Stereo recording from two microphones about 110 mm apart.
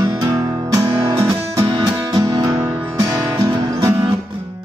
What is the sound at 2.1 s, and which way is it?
Music, 35° right (ahead or behind).